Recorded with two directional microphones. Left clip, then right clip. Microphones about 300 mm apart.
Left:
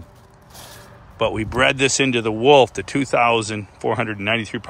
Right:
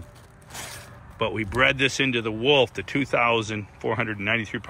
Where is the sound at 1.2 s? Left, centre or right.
Centre.